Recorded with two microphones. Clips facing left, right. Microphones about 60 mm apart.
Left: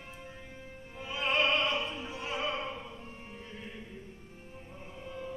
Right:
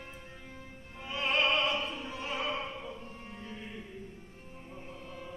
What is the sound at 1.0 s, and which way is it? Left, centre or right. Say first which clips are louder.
Opera: even; centre.